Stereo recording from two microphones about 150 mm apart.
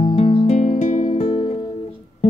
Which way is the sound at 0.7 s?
60° left (ahead or behind).